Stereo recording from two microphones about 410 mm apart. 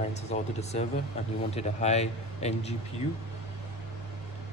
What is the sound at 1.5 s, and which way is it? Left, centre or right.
Speech, centre.